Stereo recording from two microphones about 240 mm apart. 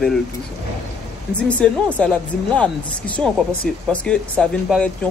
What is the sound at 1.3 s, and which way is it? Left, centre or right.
Speech, centre.